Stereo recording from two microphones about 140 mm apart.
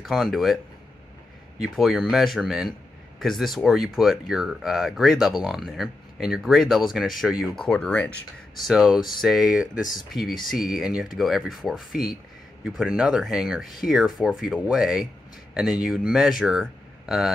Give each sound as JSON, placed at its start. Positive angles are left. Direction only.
{"t": 0.0, "sound": "speech", "side_deg": 0}
{"t": 1.6, "sound": "speech", "side_deg": 0}
{"t": 8.6, "sound": "speech", "side_deg": -5}